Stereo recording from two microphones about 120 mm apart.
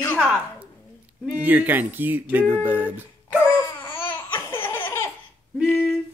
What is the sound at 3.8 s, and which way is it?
Laughter, 20° left (ahead or behind).